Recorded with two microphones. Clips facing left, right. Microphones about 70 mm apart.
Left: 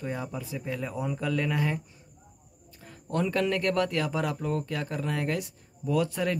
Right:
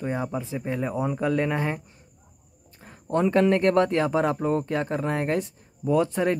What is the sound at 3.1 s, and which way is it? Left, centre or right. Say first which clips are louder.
Speech: right 7 dB; right.